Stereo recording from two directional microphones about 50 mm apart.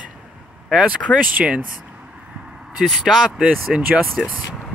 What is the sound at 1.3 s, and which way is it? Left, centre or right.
Speech, right.